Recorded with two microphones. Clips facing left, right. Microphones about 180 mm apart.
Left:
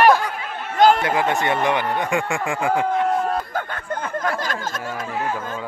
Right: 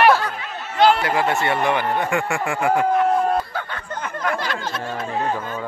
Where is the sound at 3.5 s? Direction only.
50° left (ahead or behind).